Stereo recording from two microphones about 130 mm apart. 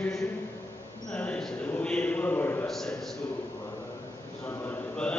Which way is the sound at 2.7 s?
5° left (ahead or behind).